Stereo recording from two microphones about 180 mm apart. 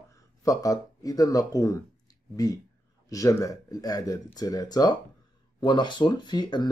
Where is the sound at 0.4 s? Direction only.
20° left (ahead or behind).